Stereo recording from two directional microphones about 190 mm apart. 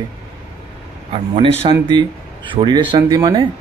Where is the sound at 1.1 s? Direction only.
30° right (ahead or behind).